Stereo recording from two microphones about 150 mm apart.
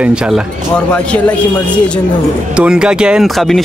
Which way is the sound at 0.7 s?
10° left (ahead or behind).